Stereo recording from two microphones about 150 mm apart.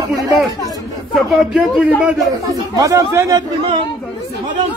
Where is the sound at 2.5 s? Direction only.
25° right (ahead or behind).